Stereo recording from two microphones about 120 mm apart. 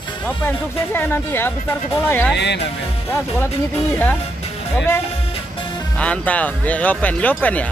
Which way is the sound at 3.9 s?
15° left (ahead or behind).